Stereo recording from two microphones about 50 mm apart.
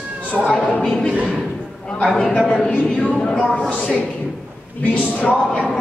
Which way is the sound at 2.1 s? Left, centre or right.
Centre.